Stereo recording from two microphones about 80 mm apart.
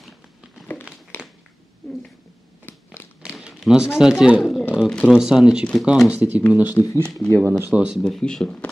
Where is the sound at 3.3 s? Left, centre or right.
Centre.